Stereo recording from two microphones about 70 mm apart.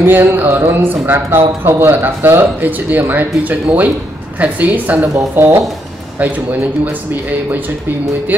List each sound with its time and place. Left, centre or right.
0.0 s speech: right
5.3 s speech: right
6.1 s speech: right